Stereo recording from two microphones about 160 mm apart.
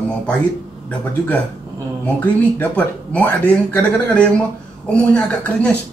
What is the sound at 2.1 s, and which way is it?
Speech, 10° left (ahead or behind).